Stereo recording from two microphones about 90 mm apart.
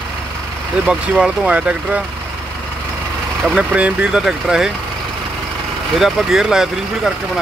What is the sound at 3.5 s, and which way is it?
Speech, 15° right (ahead or behind).